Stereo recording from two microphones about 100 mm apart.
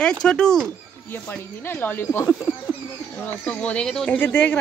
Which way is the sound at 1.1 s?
20° left (ahead or behind).